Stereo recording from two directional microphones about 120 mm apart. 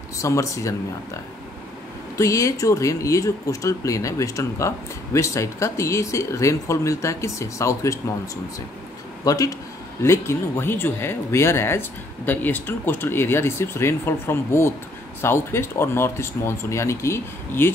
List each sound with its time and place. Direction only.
0.2 s speech: 25° left (ahead or behind)
2.1 s speech: 25° left (ahead or behind)
9.2 s speech: 30° left (ahead or behind)